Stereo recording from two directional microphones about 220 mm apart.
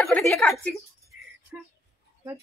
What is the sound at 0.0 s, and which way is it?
Speech, centre (ahead or behind).